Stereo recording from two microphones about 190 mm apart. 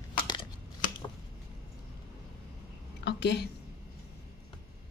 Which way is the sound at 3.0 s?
60° left (ahead or behind).